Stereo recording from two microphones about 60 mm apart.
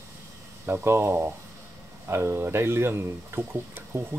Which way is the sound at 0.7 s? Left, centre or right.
Right.